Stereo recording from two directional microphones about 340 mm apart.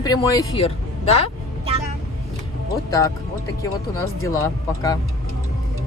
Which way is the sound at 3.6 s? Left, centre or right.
Centre.